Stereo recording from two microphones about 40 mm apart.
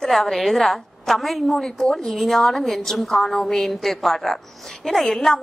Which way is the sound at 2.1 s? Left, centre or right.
Centre.